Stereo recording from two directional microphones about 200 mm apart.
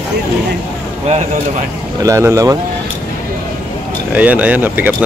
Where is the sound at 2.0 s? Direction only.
15° right (ahead or behind).